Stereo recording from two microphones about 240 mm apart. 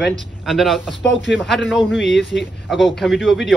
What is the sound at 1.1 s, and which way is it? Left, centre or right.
Speech, left.